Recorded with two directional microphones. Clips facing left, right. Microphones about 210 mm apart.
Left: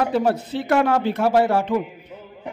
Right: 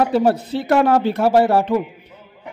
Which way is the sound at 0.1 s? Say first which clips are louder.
Right 4 dB; 35° right (ahead or behind).